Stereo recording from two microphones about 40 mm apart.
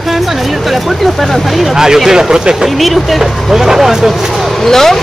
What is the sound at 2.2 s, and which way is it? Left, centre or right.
Speech, centre.